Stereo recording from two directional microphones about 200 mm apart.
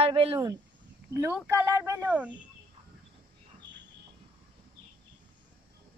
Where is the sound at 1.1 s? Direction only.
10° right (ahead or behind).